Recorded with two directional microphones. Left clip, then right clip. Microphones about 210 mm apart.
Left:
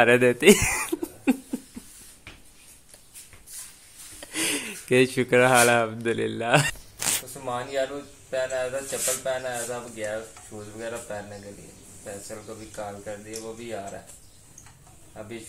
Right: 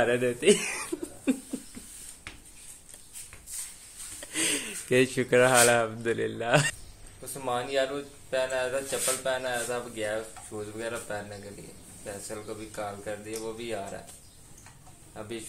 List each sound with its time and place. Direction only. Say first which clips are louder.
0.0 s speech: left 7 dB; 35° left (ahead or behind)
4.2 s speech: left 2 dB; 15° left (ahead or behind)
7.3 s speech: right 4 dB; centre (ahead or behind)
15.2 s speech: left 1 dB; 5° right (ahead or behind)